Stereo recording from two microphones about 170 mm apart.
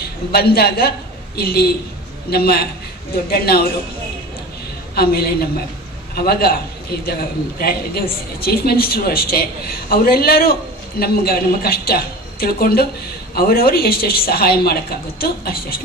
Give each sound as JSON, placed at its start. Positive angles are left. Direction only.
{"t": 0.3, "sound": "a woman's voice", "side_deg": 65}
{"t": 4.9, "sound": "a woman's voice", "side_deg": 65}